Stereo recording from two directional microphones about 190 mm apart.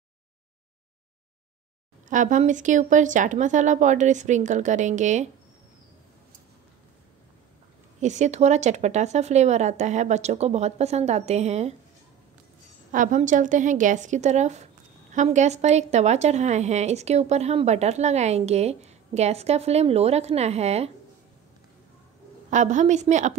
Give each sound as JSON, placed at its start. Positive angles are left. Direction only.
{"t": 2.0, "sound": "a woman's voice", "side_deg": -40}
{"t": 8.0, "sound": "a woman's voice", "side_deg": -40}
{"t": 12.9, "sound": "a woman's voice", "side_deg": -45}
{"t": 22.5, "sound": "a woman's voice", "side_deg": -40}